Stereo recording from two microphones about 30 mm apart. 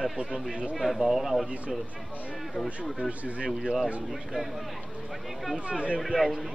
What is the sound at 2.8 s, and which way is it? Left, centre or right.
Speech, right.